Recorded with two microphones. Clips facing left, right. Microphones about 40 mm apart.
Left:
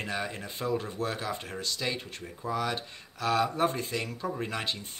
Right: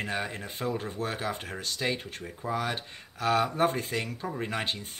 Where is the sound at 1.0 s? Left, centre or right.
Right.